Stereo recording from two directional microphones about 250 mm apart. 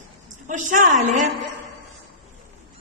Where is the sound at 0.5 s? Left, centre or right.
Right.